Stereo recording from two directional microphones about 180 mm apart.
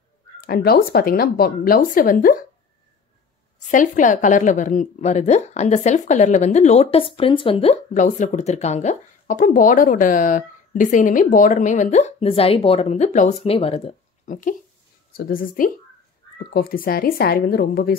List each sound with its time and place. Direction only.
0.4 s a woman's voice: 55° left (ahead or behind)
3.7 s a woman's voice: 45° left (ahead or behind)